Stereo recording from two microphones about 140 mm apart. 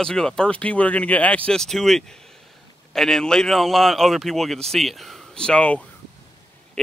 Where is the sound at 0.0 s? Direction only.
5° left (ahead or behind).